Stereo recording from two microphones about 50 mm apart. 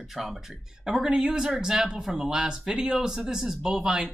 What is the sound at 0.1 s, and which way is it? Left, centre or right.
Speech, centre.